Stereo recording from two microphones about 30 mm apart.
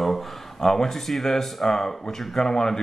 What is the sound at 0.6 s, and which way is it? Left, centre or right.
Speech, centre.